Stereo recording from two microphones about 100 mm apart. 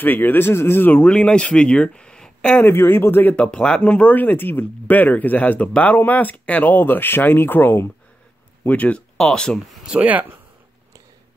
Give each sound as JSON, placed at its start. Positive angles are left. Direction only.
{"t": 0.0, "sound": "speech", "side_deg": 20}
{"t": 2.6, "sound": "speech", "side_deg": 25}
{"t": 9.8, "sound": "speech", "side_deg": -15}